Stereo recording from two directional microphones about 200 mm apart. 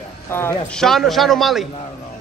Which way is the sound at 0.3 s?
10° left (ahead or behind).